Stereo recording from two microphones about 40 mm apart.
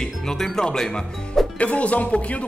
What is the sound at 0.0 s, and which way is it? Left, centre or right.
Music, centre.